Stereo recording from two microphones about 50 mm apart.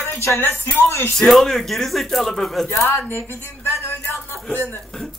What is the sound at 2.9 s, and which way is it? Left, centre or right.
Speech, left.